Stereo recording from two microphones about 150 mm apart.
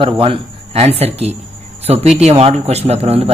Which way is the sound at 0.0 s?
35° right (ahead or behind).